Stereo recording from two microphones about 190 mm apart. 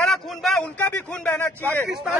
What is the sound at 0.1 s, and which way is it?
Speech, centre (ahead or behind).